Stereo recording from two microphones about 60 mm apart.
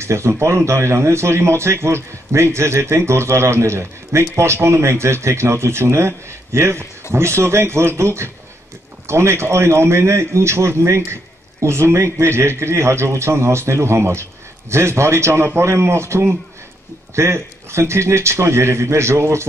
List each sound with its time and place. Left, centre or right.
0.0 s a man's voice: right